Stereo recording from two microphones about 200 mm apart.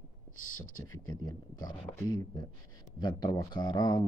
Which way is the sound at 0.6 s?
90° left.